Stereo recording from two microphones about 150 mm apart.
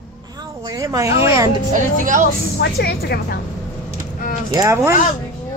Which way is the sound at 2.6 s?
90° left.